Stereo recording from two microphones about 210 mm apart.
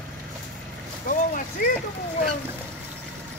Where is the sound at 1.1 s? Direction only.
40° left (ahead or behind).